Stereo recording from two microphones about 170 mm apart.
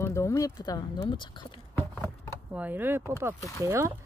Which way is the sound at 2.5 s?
10° right (ahead or behind).